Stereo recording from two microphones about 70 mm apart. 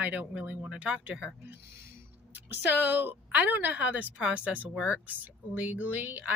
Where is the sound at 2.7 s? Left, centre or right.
Right.